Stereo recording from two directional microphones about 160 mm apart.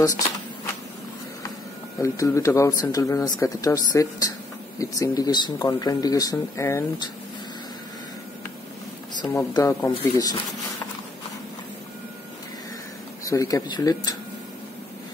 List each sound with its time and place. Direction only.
2.0 s speech: 20° left (ahead or behind)
9.3 s speech: 20° left (ahead or behind)
13.2 s speech: 20° left (ahead or behind)